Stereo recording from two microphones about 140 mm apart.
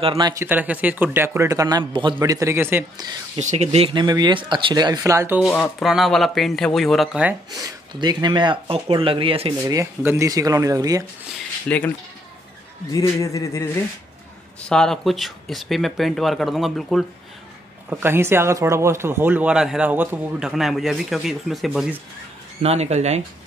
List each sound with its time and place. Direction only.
0.2 s speech: 25° right (ahead or behind)
0.5 s speech: 10° right (ahead or behind); by 2.1 s 35° right (ahead or behind)
2.1 s speech: 20° right (ahead or behind)
3.3 s speech: 55° right (ahead or behind)
3.9 s speech: 30° right (ahead or behind)
5.8 s speech: centre (ahead or behind)
7.5 s speech: 30° right (ahead or behind)
9.6 s speech: 20° right (ahead or behind)
11.7 s speech: 10° left (ahead or behind)
12.9 s speech: 25° left (ahead or behind)
14.6 s speech: 5° left (ahead or behind)
17.8 s speech: 15° right (ahead or behind)
22.6 s speech: 50° right (ahead or behind)